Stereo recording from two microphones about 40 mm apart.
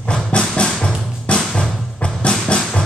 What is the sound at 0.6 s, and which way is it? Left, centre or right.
Music, left.